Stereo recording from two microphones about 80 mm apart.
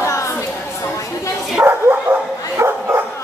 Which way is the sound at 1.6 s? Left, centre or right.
Right.